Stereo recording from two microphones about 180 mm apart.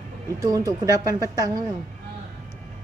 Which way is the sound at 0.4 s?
20° right (ahead or behind).